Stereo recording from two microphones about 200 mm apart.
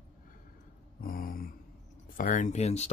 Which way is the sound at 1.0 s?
45° left (ahead or behind).